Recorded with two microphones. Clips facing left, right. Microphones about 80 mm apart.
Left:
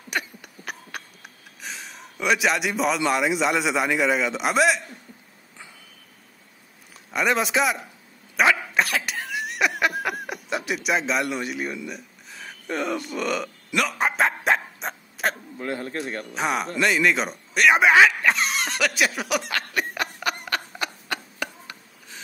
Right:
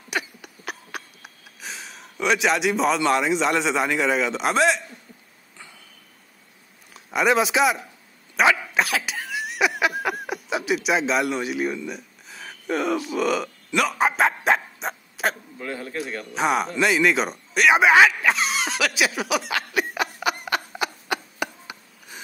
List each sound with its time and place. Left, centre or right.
0.1 s a sound: centre
3.1 s a man's voice: centre
7.1 s a man's voice: centre
8.4 s cough: centre
13.7 s dog: centre
15.6 s speech: left
16.3 s a sound: centre